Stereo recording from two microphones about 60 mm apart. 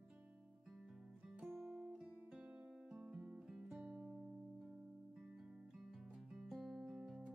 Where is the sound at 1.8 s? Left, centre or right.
Centre.